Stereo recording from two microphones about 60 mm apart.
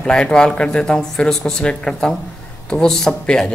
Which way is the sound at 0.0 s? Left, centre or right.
Centre.